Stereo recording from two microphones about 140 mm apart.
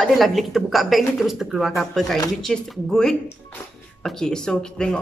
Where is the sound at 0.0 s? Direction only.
Centre (ahead or behind).